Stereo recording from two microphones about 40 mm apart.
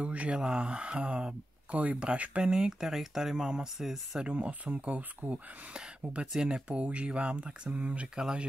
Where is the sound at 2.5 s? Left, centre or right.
Centre.